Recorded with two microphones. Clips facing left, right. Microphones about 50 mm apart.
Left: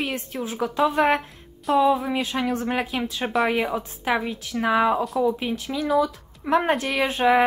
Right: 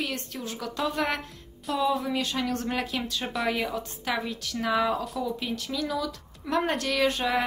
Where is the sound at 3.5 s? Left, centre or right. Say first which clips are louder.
Left 5 dB; left.